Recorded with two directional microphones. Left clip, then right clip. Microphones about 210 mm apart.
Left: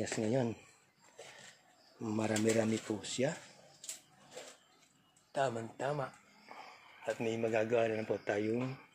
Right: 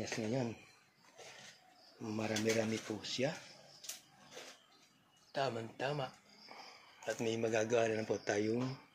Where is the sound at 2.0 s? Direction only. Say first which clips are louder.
Left 3 dB; 30° left (ahead or behind).